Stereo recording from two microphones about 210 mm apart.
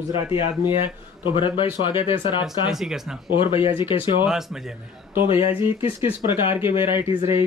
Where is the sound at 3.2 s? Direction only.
25° left (ahead or behind).